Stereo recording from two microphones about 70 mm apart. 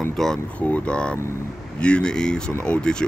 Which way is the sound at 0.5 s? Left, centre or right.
Centre.